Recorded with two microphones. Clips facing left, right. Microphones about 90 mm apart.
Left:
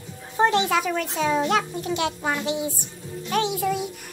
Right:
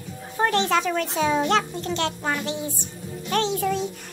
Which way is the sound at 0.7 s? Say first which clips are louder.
Right 1 dB; 5° left (ahead or behind).